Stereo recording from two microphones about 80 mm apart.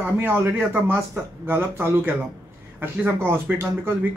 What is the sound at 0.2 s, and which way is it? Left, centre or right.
Speech, right.